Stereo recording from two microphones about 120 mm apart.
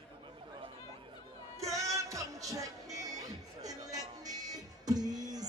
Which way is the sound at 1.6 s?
25° right (ahead or behind).